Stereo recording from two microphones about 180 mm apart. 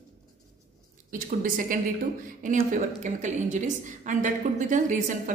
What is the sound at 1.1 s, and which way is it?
A woman's voice, 50° right (ahead or behind).